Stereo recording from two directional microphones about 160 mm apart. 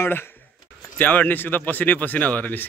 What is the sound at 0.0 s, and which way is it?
Speech, 15° left (ahead or behind).